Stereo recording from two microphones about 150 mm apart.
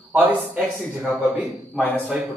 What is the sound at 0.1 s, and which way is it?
Speech, 10° right (ahead or behind).